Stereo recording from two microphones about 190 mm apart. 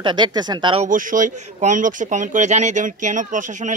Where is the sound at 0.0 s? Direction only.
25° right (ahead or behind).